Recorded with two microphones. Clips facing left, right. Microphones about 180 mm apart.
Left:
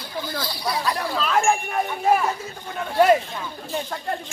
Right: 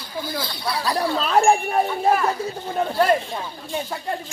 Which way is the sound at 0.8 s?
35° right (ahead or behind).